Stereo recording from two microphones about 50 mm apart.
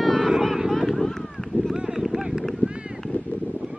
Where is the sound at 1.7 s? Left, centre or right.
Centre.